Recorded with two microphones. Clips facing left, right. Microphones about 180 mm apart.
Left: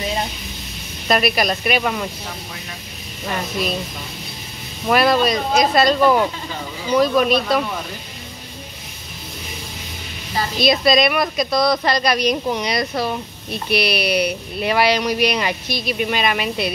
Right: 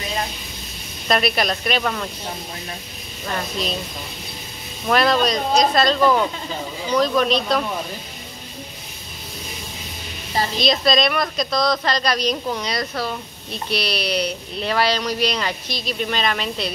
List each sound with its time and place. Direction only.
1.0 s speech: 5° left (ahead or behind)
3.3 s speech: 10° left (ahead or behind)
4.8 s speech: 5° left (ahead or behind)
10.6 s speech: 10° left (ahead or behind)